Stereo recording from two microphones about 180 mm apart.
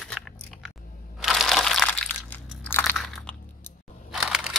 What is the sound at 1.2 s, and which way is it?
Crunch, centre (ahead or behind).